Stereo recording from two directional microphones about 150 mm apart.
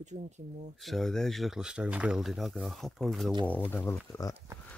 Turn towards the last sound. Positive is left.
turn(degrees=20)  # may be behind; listen again after turning